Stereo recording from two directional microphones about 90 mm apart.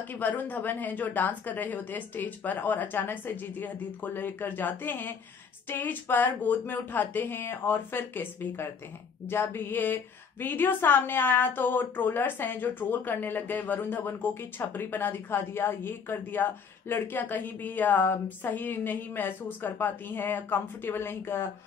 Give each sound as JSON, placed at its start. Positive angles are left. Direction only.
{"t": 0.1, "sound": "a woman's voice", "side_deg": 20}